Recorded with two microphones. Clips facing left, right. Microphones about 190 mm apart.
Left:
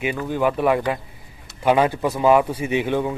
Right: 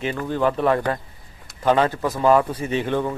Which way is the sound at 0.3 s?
10° left (ahead or behind).